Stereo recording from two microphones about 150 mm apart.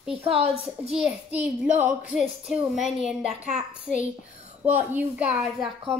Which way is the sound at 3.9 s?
5° left (ahead or behind).